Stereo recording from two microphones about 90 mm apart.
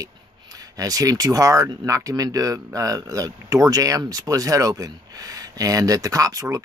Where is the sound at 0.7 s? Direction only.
40° right (ahead or behind).